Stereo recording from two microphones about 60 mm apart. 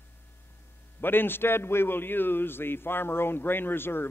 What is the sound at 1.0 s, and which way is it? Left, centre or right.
A man's voice, left.